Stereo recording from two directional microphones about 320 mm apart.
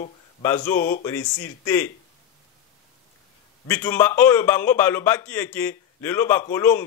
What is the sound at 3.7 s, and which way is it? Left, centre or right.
A man's voice, centre.